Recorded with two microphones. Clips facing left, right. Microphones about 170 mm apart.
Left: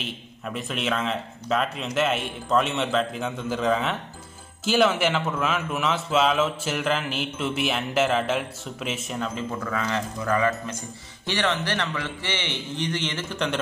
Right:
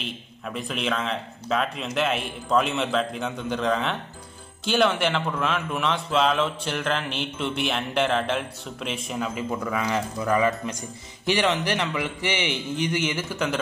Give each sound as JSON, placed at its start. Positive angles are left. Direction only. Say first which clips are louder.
{"t": 0.0, "sound": "a man's voice", "louder": "even", "side_deg": 0}